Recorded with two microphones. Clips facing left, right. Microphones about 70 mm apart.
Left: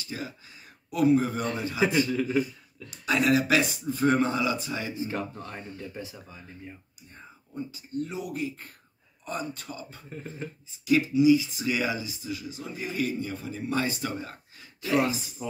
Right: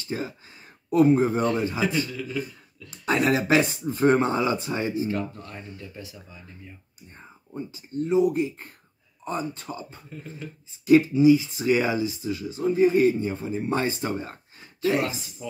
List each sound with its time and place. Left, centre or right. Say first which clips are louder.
0.1 s speech: right 6 dB; right
1.8 s speech: left 2 dB; left
2.9 s speech: right 1 dB; right
4.9 s speech: right 5 dB; left
7.5 s speech: right 2 dB; right
10.0 s speech: left 1 dB; left
10.9 s speech: right 4 dB; right
15.0 s speech: left 2 dB; left